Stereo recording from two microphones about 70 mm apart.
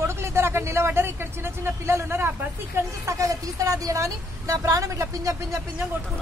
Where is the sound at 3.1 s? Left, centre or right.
Right.